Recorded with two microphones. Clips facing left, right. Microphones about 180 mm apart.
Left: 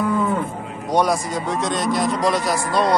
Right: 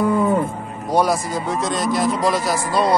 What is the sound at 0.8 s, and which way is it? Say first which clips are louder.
A man's voice: right 1 dB; 5° right (ahead or behind).